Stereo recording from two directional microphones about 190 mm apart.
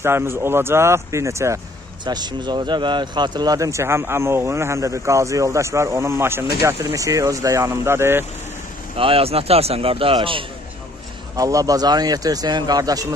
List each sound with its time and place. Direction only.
0.0 s speech: 15° right (ahead or behind)
8.9 s speech: 30° right (ahead or behind)